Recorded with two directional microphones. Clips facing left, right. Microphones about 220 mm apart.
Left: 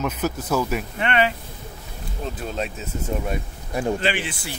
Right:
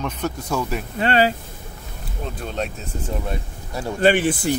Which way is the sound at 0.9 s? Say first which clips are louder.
Right 4 dB; 35° right (ahead or behind).